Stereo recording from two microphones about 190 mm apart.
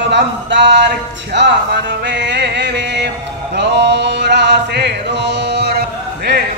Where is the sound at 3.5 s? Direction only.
65° right (ahead or behind).